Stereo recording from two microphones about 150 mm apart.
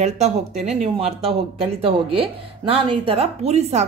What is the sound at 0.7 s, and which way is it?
A woman's voice, 45° right (ahead or behind).